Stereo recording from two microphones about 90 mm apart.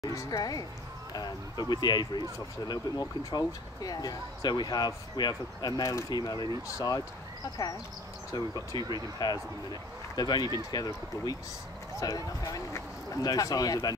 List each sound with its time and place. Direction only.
0.1 s speech: 35° left (ahead or behind); by 2.2 s 55° left (ahead or behind)
2.7 s speech: 40° left (ahead or behind)
8.3 s speech: 50° left (ahead or behind)
12.0 s speech: 40° left (ahead or behind)